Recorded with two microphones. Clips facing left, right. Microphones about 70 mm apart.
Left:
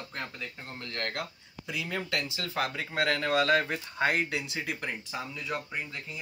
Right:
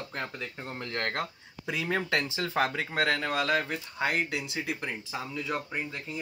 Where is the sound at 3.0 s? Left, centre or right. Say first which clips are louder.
Left 3 dB; centre.